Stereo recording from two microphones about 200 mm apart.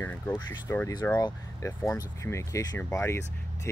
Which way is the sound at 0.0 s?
10° left (ahead or behind).